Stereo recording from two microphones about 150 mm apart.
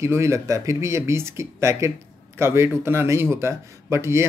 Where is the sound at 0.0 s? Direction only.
20° right (ahead or behind).